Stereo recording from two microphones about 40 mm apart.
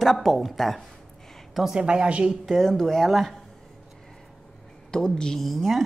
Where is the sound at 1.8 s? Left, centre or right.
Right.